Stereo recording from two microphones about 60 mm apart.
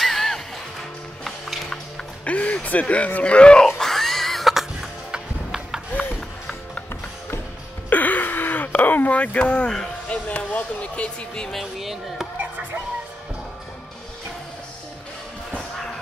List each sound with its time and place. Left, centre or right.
0.0 s music: centre
2.2 s speech: left
3.6 s a sound: centre
5.1 s music: centre
7.9 s gasp: left
10.0 s speech: left
11.5 s speech: centre